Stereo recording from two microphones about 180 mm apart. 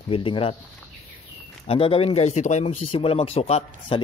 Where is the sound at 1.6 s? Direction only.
30° left (ahead or behind).